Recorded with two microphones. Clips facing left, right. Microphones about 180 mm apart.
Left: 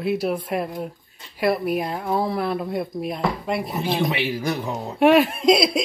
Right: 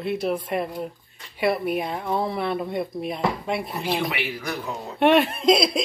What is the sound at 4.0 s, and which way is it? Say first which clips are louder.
Speech: left 5 dB; 25° left (ahead or behind).